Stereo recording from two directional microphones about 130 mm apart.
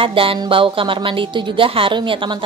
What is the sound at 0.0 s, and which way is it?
A woman's voice, 45° right (ahead or behind).